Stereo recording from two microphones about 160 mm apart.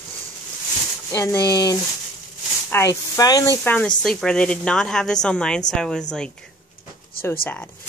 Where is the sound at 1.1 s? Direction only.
20° left (ahead or behind).